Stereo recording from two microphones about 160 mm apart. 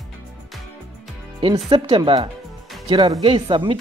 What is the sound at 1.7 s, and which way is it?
Speech, 30° right (ahead or behind).